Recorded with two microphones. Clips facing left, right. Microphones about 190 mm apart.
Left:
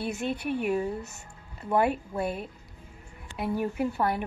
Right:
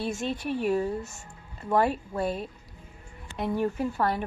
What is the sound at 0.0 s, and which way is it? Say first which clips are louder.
Speech: even; 60° left (ahead or behind).